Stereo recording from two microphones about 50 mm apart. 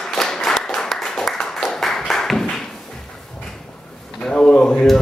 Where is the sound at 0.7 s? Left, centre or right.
Centre.